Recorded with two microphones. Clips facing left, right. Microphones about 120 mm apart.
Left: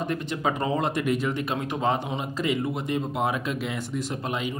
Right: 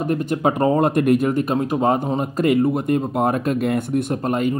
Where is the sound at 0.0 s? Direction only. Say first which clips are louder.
Right 7 dB; 45° right (ahead or behind).